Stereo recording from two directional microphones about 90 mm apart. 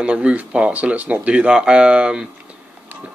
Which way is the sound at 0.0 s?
10° right (ahead or behind).